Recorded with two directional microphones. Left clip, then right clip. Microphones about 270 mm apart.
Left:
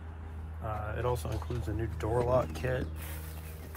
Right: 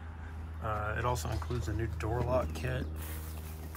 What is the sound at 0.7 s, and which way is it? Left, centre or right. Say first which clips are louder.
Speech: right 1 dB; centre.